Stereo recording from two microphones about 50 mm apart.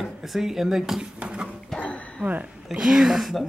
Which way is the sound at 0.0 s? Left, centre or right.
Centre.